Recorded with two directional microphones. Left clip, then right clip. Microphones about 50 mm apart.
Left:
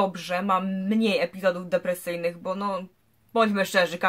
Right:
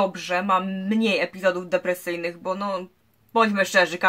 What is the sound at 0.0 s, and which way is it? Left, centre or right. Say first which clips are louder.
Speech: right 2 dB; left.